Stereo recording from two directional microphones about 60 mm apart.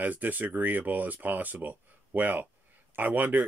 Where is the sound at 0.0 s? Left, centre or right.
Right.